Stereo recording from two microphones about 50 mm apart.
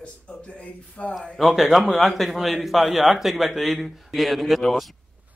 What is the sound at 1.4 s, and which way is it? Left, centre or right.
A man's voice, centre.